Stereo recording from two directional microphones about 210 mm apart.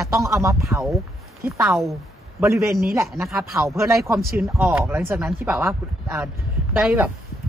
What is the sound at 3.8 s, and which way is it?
Speech, 15° right (ahead or behind).